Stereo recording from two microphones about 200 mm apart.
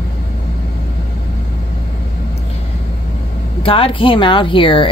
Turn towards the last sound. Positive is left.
turn(degrees=25)  # may be behind; listen again after turning